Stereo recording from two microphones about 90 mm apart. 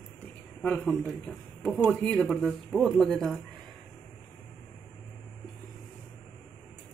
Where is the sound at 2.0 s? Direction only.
10° left (ahead or behind).